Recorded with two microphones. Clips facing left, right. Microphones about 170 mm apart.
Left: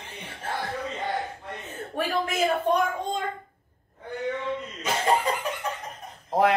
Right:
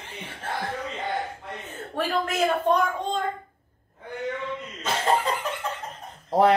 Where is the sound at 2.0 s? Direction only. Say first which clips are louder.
Right 1 dB; 10° left (ahead or behind).